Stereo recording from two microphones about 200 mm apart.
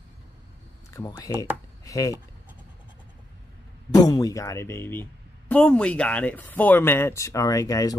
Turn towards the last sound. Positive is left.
turn(degrees=15)  # may be behind; listen again after turning